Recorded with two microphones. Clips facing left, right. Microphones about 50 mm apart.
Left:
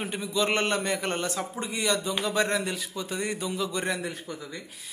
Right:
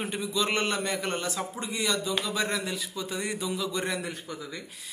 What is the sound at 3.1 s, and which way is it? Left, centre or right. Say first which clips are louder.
Speech: left 2 dB; centre.